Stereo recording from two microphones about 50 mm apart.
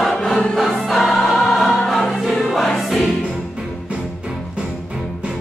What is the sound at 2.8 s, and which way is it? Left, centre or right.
Music, centre.